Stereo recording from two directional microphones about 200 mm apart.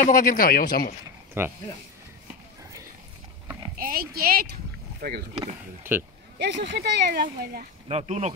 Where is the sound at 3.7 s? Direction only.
45° right (ahead or behind).